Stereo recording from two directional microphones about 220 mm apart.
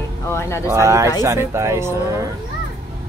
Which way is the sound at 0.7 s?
15° right (ahead or behind).